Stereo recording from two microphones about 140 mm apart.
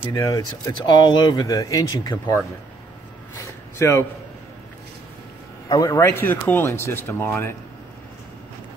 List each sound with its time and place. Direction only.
0.0 s speech: 30° left (ahead or behind)
3.3 s a sound: 20° left (ahead or behind)
5.7 s speech: 25° left (ahead or behind)